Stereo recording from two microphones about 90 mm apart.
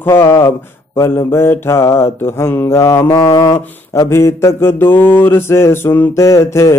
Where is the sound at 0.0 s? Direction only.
30° left (ahead or behind).